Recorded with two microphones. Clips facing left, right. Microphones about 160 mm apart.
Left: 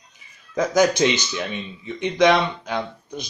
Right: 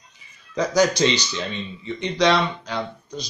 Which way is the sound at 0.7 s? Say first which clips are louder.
Left 1 dB; 15° left (ahead or behind).